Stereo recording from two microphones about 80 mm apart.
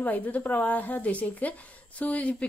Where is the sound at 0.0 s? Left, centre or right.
Left.